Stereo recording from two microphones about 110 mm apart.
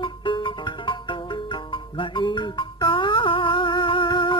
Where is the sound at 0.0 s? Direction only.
50° left (ahead or behind).